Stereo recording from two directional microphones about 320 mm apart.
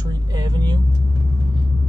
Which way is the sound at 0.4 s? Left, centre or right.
Centre.